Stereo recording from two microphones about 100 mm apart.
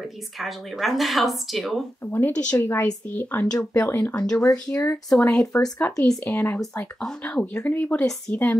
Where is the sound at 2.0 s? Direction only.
20° left (ahead or behind).